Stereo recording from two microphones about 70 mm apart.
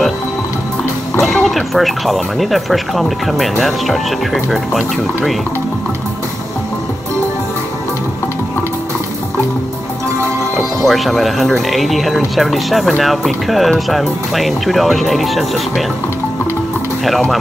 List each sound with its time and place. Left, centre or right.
1.2 s speech: centre
10.9 s speech: centre